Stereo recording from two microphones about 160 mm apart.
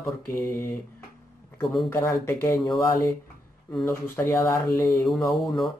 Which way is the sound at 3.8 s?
15° left (ahead or behind).